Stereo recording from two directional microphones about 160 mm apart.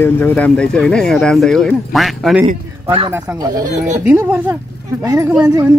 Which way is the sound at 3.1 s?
15° right (ahead or behind).